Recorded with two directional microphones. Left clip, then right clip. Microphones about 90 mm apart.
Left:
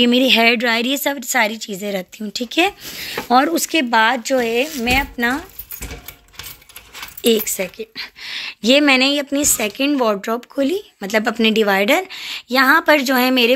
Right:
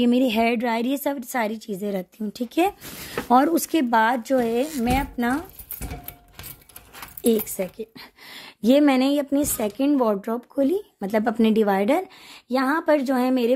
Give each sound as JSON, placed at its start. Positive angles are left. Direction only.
{"t": 0.0, "sound": "speech", "side_deg": 0}
{"t": 0.4, "sound": "a woman's voice", "side_deg": -15}
{"t": 3.0, "sound": "speech", "side_deg": -35}
{"t": 7.2, "sound": "a woman's voice", "side_deg": -15}
{"t": 7.7, "sound": "speech", "side_deg": -35}